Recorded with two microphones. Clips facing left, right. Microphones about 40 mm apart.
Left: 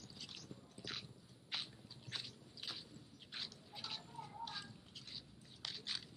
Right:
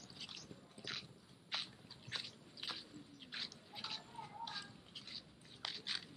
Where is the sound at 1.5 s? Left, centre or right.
Centre.